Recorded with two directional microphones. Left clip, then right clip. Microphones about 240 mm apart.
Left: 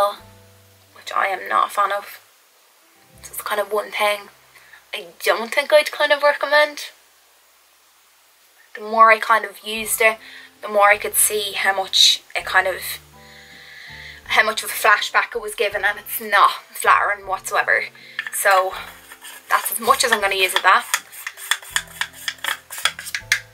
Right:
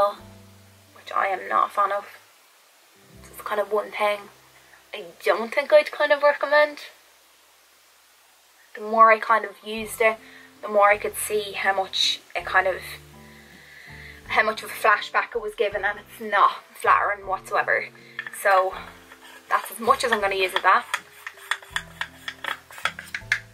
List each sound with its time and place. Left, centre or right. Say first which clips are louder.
1.0 s speech: left 3 dB; centre
3.3 s speech: left 3 dB; centre
5.2 s speech: left 3 dB; centre
8.9 s speech: left 3 dB; centre
21.4 s rub: left 6 dB; centre